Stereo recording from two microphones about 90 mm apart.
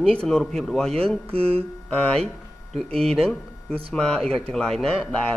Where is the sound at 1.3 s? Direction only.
90° right.